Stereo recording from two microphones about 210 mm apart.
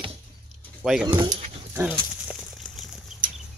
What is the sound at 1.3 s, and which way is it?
Dog, 30° right (ahead or behind).